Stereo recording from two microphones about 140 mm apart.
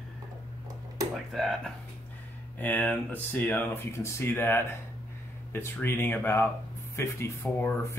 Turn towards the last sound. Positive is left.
turn(degrees=20)  # may be behind; listen again after turning